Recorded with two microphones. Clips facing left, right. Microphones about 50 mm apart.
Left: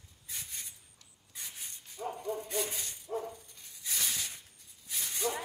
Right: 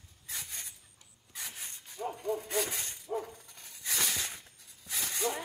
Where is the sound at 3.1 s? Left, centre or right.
Centre.